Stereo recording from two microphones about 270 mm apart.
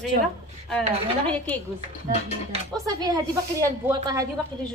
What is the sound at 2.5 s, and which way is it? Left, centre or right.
Speech, centre.